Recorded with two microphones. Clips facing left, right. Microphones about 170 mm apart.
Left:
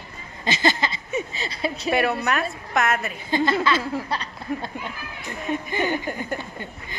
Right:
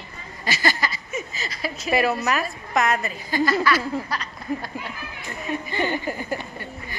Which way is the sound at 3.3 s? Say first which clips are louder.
Even; 25° left (ahead or behind).